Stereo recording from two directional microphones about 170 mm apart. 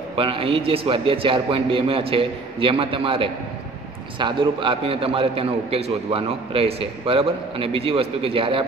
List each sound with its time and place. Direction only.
0.1 s a man's voice: 35° right (ahead or behind)